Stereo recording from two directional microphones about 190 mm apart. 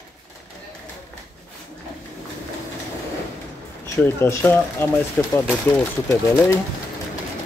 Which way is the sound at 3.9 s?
15° left (ahead or behind).